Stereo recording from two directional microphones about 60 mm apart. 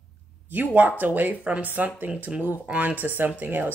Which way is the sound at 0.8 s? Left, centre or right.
Right.